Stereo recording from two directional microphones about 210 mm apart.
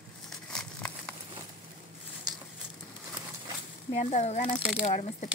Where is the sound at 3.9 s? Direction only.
30° left (ahead or behind).